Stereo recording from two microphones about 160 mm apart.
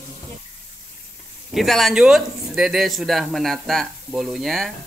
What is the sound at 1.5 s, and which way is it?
Speech, centre (ahead or behind).